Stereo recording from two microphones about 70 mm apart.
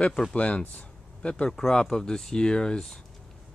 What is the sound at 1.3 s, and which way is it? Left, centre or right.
Speech, centre.